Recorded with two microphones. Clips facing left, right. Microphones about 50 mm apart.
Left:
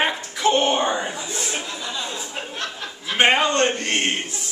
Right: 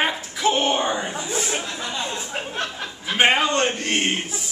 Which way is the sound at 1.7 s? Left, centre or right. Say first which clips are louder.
Right 1 dB; right.